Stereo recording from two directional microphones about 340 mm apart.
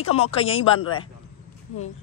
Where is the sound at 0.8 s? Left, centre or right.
Left.